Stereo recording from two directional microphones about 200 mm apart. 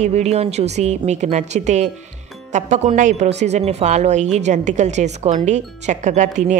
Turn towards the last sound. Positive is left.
turn(degrees=-40)  # may be behind; listen again after turning